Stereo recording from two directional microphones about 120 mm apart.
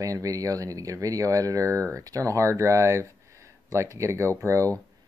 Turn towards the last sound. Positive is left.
turn(degrees=-25)  # may be behind; listen again after turning